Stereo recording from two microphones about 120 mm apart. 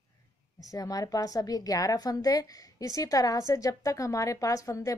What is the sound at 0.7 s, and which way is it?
A woman's voice, 30° left (ahead or behind).